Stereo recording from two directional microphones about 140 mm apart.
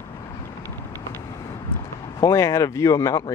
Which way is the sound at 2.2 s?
20° left (ahead or behind).